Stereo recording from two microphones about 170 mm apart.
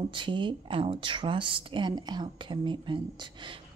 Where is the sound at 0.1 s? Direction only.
30° right (ahead or behind).